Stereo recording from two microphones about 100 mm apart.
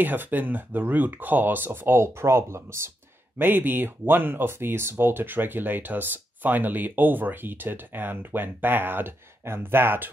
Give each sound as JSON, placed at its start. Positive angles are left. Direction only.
{"t": 0.0, "sound": "speech", "side_deg": -20}